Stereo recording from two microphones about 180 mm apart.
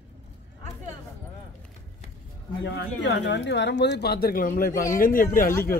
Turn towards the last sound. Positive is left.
turn(degrees=55)  # may be behind; listen again after turning